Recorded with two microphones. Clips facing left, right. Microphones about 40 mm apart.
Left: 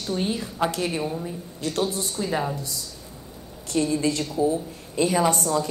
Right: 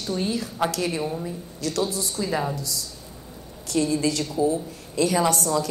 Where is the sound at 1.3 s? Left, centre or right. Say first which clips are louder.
Even; left.